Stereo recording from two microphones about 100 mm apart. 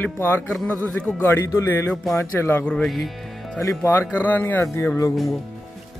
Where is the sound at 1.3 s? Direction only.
30° left (ahead or behind).